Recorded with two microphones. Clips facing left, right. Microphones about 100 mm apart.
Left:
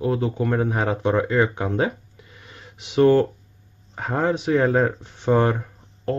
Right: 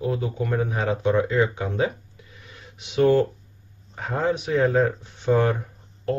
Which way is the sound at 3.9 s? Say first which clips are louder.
Left 2 dB; 40° left (ahead or behind).